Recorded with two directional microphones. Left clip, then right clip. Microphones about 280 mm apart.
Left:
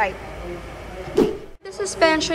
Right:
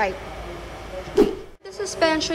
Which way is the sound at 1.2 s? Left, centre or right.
Centre.